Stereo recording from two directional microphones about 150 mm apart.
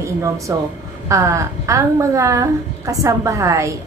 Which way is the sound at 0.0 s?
20° right (ahead or behind).